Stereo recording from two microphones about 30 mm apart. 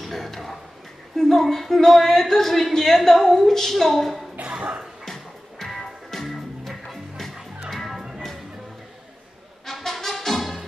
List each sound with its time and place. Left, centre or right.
0.0 s a sound: centre
1.1 s a woman's voice: centre
4.5 s music: right
5.0 s music: centre
9.7 s music: centre